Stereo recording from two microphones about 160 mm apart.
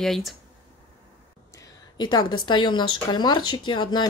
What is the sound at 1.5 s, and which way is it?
A woman's voice, 25° left (ahead or behind).